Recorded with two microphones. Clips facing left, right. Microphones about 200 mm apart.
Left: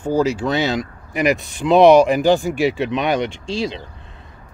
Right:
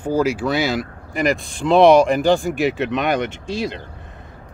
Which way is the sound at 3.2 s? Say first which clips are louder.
Left 1 dB; 55° right (ahead or behind).